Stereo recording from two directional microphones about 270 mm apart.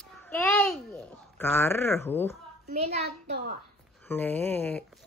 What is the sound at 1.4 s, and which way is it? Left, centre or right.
Speech, centre.